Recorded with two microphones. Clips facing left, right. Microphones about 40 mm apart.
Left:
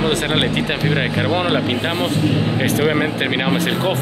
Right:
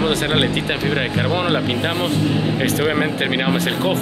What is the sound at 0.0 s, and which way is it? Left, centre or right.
Speech, centre.